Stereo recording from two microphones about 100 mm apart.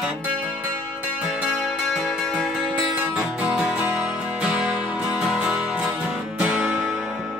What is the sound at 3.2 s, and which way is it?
Music, 10° right (ahead or behind).